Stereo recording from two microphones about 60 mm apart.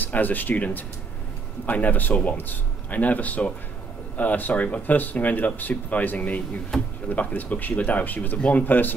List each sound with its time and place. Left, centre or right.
0.0 s speech: left
1.7 s speech: left
6.7 s drawer open or close: centre
7.1 s speech: left